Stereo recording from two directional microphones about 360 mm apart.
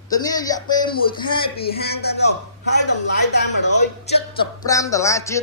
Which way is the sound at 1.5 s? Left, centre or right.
Left.